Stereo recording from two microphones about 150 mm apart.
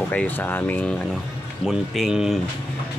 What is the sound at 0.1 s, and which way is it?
Speech, 10° left (ahead or behind).